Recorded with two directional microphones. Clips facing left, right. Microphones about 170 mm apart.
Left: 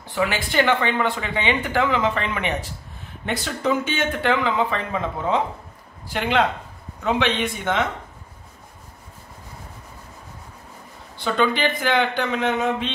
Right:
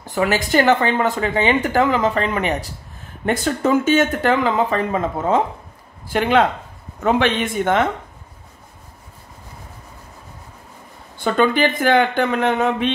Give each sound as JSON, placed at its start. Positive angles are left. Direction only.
{"t": 0.0, "sound": "speech", "side_deg": -45}
{"t": 11.1, "sound": "speech", "side_deg": -50}